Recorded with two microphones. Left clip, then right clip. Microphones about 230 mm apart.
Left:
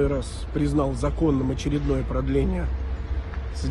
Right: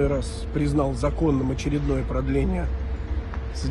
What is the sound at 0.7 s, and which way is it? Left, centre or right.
Speech, left.